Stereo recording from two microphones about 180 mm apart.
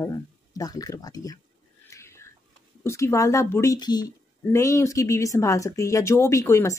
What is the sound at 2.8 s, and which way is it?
Speech, 15° left (ahead or behind).